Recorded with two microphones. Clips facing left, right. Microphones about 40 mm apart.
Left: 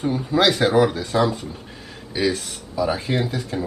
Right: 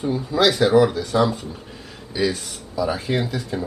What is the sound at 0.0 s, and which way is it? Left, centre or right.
Speech, left.